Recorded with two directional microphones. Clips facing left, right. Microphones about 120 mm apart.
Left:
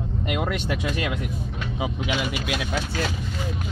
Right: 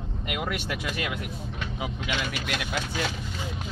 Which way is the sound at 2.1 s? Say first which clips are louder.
Left 2 dB; 15° left (ahead or behind).